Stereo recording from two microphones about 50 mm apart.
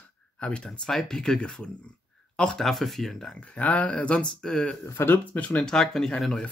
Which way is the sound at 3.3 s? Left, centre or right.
Left.